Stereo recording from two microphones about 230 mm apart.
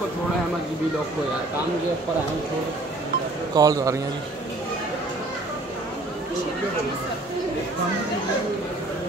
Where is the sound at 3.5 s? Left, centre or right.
Centre.